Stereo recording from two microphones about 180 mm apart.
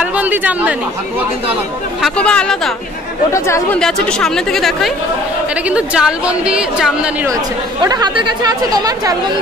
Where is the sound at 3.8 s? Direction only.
5° left (ahead or behind).